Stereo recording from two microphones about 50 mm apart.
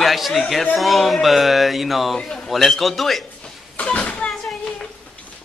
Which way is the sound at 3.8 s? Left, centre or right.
Left.